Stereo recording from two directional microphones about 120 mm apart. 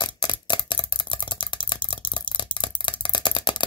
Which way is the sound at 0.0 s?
40° left (ahead or behind).